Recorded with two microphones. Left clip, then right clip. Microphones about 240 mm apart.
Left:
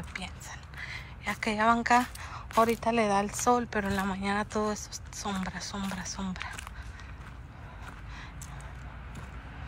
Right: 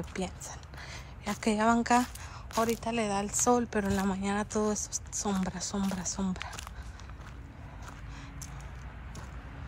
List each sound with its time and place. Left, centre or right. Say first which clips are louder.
0.0 s a woman's voice: right 2 dB; right